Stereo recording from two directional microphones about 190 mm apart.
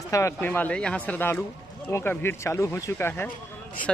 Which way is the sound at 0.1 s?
15° left (ahead or behind).